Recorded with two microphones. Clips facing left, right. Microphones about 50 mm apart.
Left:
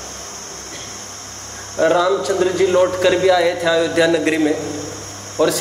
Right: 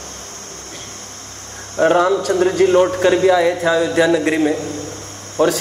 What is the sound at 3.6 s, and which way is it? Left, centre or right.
Speech, right.